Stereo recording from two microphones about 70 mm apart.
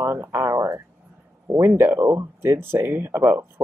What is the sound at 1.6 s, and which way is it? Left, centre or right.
Speech, right.